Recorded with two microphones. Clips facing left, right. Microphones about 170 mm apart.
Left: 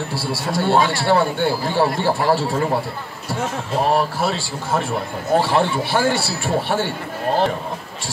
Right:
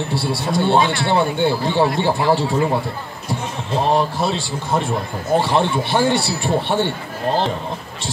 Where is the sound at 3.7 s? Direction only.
20° right (ahead or behind).